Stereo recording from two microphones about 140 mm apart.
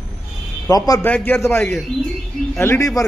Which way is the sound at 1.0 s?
15° left (ahead or behind).